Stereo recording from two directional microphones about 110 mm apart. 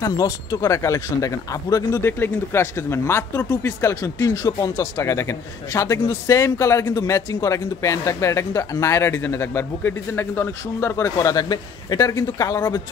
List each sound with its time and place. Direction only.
0.0 s speech: 30° left (ahead or behind)
1.9 s speech: 20° left (ahead or behind)
3.8 s speech: 30° left (ahead or behind)